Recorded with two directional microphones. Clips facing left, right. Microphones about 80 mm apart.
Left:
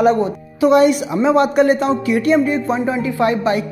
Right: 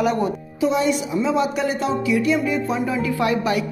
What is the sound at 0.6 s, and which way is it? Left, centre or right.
Speech, left.